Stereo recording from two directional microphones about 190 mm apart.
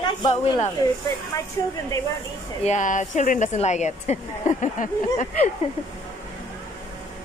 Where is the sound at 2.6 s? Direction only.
40° left (ahead or behind).